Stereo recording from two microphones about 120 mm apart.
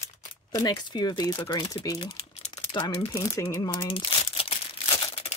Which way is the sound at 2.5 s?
45° left (ahead or behind).